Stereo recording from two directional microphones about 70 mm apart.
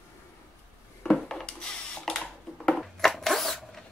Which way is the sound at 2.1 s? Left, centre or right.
Centre.